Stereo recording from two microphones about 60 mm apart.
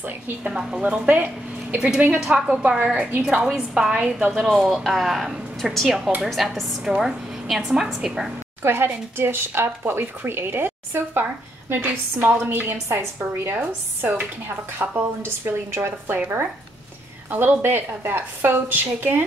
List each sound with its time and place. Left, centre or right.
0.5 s a woman's voice: centre
1.0 s speech: right
2.2 s a woman's voice: centre
2.8 s a woman's voice: right
3.5 s a woman's voice: centre
4.4 s a woman's voice: centre
8.6 s a woman's voice: right
17.3 s a woman's voice: right